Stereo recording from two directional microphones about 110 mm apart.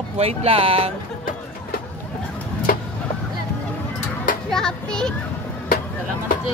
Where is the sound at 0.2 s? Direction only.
65° right (ahead or behind).